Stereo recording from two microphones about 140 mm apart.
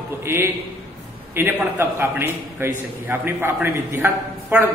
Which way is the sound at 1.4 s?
15° right (ahead or behind).